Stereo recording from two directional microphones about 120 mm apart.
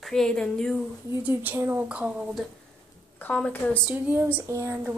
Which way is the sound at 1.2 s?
15° right (ahead or behind).